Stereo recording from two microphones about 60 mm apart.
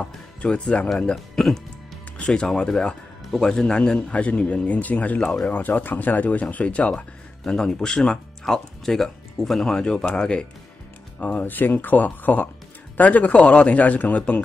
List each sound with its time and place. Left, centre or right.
0.0 s speech: centre
1.1 s speech: centre; by 7.1 s left
7.4 s speech: centre; by 14.4 s left